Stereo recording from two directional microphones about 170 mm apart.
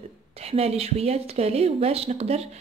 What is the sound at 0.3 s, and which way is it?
A woman's voice, 35° right (ahead or behind).